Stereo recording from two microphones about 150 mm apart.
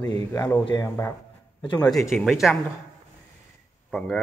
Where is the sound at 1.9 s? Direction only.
Centre (ahead or behind).